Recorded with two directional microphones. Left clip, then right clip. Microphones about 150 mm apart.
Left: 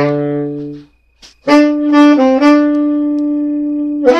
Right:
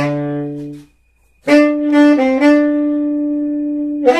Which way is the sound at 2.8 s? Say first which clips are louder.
Left 2 dB; 5° left (ahead or behind).